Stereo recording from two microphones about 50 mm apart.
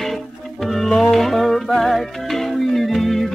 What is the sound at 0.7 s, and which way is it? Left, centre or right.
Music, centre.